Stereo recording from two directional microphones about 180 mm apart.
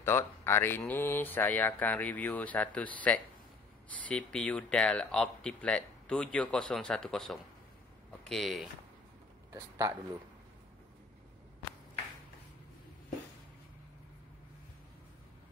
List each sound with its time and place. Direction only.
0.0 s speech: 15° left (ahead or behind)
9.5 s a man's voice: 15° right (ahead or behind)